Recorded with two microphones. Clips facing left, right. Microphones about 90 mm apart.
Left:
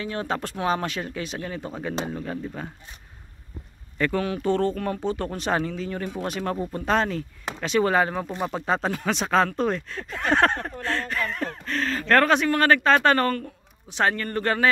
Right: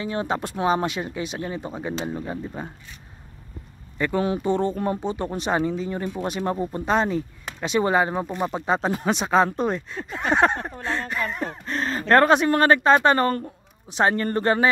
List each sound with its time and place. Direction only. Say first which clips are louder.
0.0 s speech: right 2 dB; 20° right (ahead or behind)
4.0 s a woman's voice: right 1 dB; 20° right (ahead or behind)